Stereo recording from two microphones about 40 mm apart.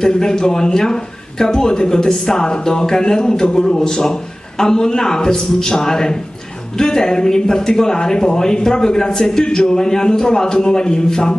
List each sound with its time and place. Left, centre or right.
0.0 s speech: centre